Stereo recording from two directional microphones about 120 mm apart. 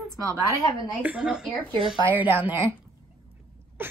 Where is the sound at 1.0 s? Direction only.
10° right (ahead or behind).